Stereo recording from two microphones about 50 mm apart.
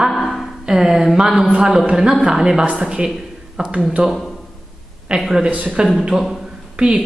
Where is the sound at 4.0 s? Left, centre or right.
Right.